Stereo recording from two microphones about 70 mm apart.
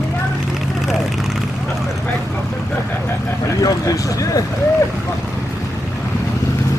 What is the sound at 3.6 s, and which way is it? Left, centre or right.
Vehicle, left.